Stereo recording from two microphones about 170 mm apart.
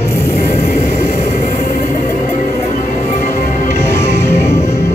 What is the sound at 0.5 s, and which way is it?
Vehicle, 45° left (ahead or behind).